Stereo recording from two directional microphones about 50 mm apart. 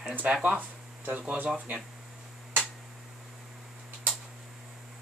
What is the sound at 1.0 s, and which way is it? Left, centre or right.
Speech, right.